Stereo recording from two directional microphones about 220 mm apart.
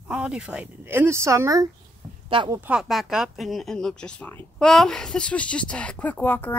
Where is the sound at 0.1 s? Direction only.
5° right (ahead or behind); by 2.6 s 20° right (ahead or behind).